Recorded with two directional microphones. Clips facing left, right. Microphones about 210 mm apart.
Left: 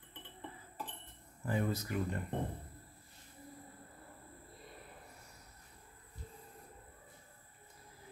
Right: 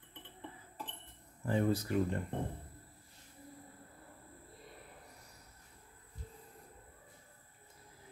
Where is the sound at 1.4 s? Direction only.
30° right (ahead or behind).